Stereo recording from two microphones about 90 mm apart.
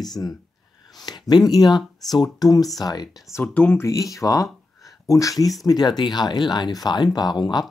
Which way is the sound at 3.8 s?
35° left (ahead or behind).